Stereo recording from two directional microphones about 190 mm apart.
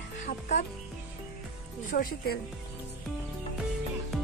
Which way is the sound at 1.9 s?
55° left (ahead or behind).